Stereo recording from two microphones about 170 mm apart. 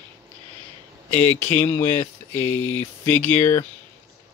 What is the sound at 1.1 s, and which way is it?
Speech, 15° left (ahead or behind).